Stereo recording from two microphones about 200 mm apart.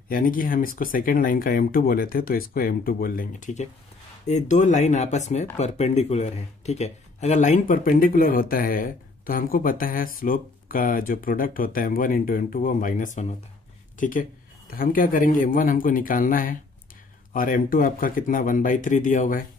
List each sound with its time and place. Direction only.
0.1 s speech: 45° left (ahead or behind)